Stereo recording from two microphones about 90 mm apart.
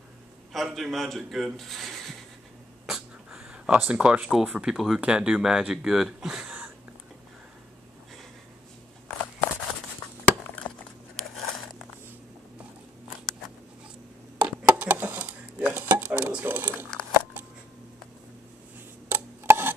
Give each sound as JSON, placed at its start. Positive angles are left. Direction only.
{"t": 0.5, "sound": "speech", "side_deg": 0}
{"t": 2.9, "sound": "a sound", "side_deg": -5}
{"t": 4.5, "sound": "speech", "side_deg": -5}
{"t": 9.2, "sound": "walk", "side_deg": 15}
{"t": 10.6, "sound": "a sound", "side_deg": 20}
{"t": 11.1, "sound": "a sound", "side_deg": 5}
{"t": 14.4, "sound": "dishes", "side_deg": -15}
{"t": 17.0, "sound": "scissors", "side_deg": 10}
{"t": 19.0, "sound": "rub", "side_deg": -25}